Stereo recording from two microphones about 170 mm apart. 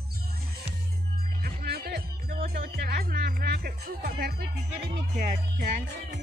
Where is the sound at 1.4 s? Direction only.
65° right (ahead or behind).